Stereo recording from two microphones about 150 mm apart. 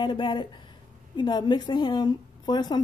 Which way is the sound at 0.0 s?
30° left (ahead or behind).